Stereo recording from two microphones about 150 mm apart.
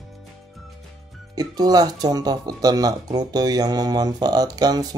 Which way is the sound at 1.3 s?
25° right (ahead or behind).